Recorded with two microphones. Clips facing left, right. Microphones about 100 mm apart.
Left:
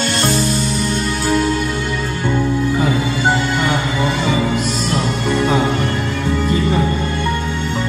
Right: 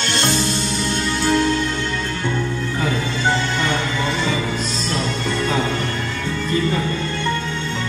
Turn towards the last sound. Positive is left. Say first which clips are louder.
# left 4 dB
turn(degrees=15)  # may be behind; listen again after turning